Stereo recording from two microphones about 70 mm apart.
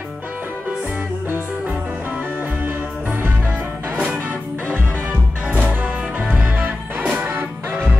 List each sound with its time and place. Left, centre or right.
2.6 s music: right
4.3 s music: left
5.7 s music: right